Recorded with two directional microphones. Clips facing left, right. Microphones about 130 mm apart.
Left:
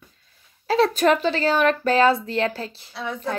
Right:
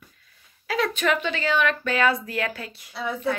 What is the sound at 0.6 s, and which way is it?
Speech, 30° left (ahead or behind).